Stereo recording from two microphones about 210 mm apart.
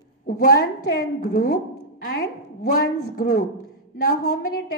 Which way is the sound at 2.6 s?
45° left (ahead or behind).